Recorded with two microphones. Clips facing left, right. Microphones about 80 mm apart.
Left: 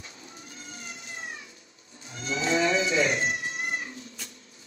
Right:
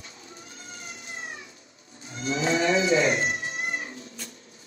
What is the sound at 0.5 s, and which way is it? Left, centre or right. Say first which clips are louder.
Cat: even; right.